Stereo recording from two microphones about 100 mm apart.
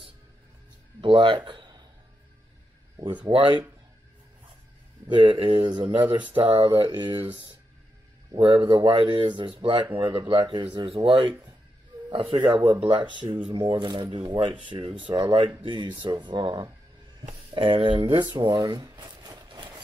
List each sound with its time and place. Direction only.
1.0 s speech: 55° right (ahead or behind)
3.0 s speech: 50° right (ahead or behind)
5.1 s speech: 55° right (ahead or behind)
8.3 s speech: 55° right (ahead or behind)
18.3 s a sound: 45° right (ahead or behind)